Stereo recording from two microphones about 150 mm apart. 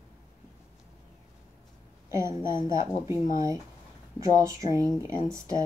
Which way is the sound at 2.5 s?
30° left (ahead or behind).